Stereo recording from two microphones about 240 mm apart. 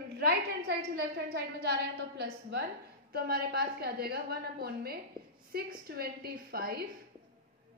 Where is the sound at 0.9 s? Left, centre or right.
Right.